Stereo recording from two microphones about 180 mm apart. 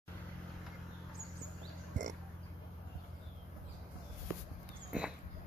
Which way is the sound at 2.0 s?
45° right (ahead or behind).